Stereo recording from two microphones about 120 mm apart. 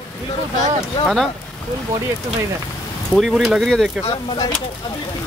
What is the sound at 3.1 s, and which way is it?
Speech, centre (ahead or behind).